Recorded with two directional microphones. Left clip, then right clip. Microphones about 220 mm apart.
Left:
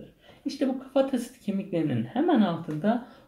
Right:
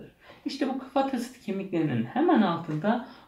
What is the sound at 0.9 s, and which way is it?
Speech, 45° left (ahead or behind).